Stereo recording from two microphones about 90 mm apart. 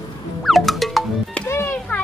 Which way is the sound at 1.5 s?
30° left (ahead or behind).